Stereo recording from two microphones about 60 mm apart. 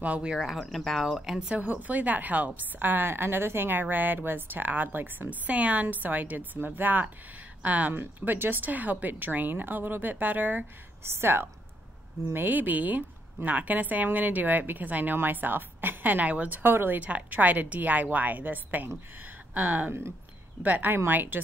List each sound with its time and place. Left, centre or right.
0.0 s speech: centre
1.5 s a woman's voice: right
5.5 s a woman's voice: right
17.0 s a woman's voice: right